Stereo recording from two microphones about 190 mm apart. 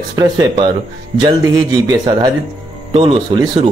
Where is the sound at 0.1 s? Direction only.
20° right (ahead or behind).